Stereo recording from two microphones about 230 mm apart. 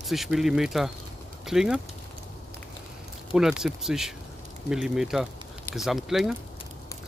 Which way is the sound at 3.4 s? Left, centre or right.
Centre.